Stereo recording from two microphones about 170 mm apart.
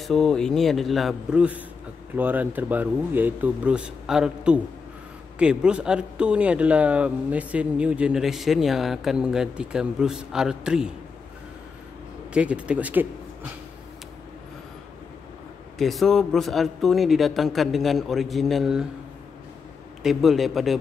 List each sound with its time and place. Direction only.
0.0 s speech: 5° left (ahead or behind)
12.3 s a man's voice: 5° right (ahead or behind)
15.8 s speech: centre (ahead or behind)
20.0 s speech: centre (ahead or behind)